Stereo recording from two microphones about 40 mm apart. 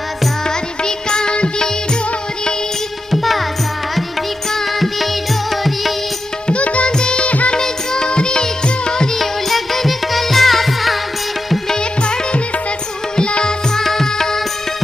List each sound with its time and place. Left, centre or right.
0.8 s music: centre
3.1 s music: centre
6.4 s music: left
6.9 s music: centre
7.2 s music: left
7.5 s music: centre
9.2 s music: centre
11.7 s music: left
13.7 s music: centre